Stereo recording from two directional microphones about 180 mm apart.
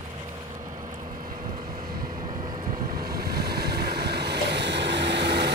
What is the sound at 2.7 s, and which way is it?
Waves, 50° right (ahead or behind).